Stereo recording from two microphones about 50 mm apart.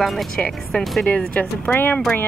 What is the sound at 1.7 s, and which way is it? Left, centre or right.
Speech, left.